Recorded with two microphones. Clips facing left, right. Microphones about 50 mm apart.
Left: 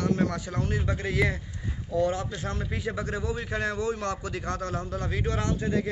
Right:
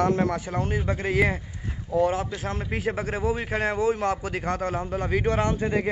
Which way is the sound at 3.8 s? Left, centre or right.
Centre.